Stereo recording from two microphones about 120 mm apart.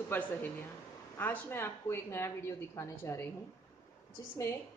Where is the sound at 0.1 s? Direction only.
15° left (ahead or behind).